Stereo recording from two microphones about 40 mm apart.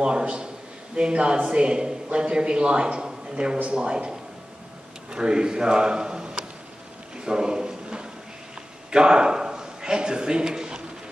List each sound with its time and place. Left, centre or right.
0.0 s a man's voice: right
5.1 s speech: right
7.2 s a sound: centre
8.9 s a man's voice: centre